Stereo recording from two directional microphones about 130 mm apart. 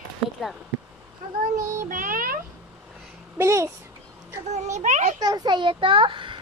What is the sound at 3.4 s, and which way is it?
Speech, 20° right (ahead or behind).